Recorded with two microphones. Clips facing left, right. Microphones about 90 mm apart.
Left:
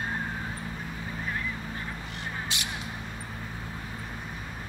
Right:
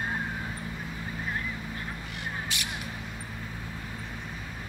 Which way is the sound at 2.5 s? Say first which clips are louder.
Even; 25° left (ahead or behind).